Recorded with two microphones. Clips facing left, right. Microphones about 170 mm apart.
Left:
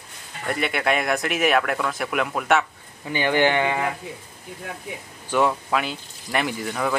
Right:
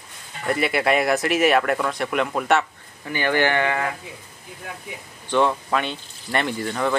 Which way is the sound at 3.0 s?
20° left (ahead or behind).